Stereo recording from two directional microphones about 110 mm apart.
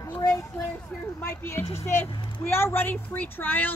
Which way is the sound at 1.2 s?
20° left (ahead or behind).